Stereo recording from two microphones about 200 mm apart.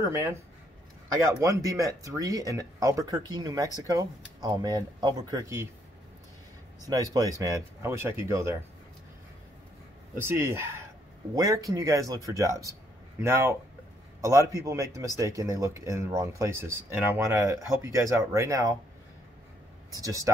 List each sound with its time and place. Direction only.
0.0 s speech: 15° right (ahead or behind)
6.8 s speech: 20° right (ahead or behind)
10.2 s speech: 10° right (ahead or behind)
19.9 s speech: 15° right (ahead or behind)